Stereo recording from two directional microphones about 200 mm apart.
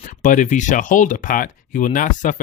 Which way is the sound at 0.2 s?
40° left (ahead or behind).